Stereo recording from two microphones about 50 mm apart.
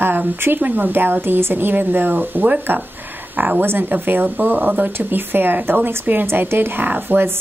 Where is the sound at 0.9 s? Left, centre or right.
Right.